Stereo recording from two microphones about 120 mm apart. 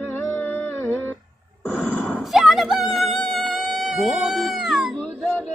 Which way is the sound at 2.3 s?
Centre (ahead or behind).